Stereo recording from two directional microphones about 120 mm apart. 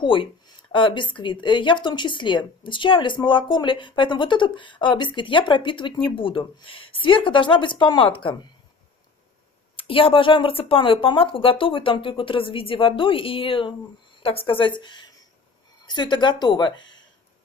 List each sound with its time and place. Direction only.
0.0 s speech: 45° left (ahead or behind)
9.8 s speech: 50° left (ahead or behind)